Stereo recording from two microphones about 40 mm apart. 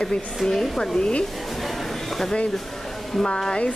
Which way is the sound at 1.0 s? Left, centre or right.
Left.